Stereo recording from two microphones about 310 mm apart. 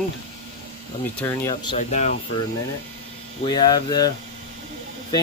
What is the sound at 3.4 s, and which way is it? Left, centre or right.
Speech, centre.